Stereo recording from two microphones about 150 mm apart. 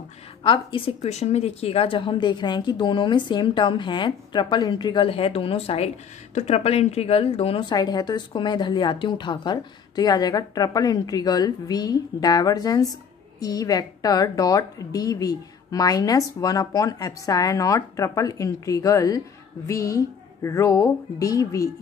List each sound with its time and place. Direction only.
0.4 s speech: 35° left (ahead or behind)
7.7 s a woman's voice: 25° left (ahead or behind)